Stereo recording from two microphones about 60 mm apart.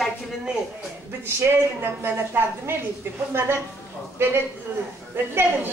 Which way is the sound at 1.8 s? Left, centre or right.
Right.